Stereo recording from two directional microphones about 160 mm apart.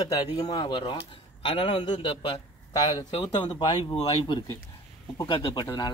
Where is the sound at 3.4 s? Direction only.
25° left (ahead or behind).